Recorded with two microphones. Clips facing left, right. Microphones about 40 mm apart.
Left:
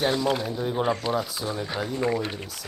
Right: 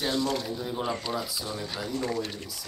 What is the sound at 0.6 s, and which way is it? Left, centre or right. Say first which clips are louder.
Speech: left 6 dB; left.